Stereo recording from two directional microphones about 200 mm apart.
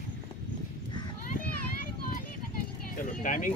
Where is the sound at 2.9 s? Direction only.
40° left (ahead or behind).